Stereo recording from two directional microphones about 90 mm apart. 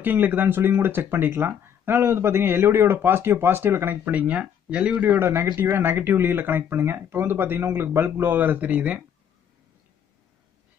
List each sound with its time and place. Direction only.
0.0 s speech: 20° right (ahead or behind)